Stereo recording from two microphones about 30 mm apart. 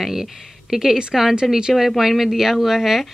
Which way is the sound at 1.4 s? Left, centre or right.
Centre.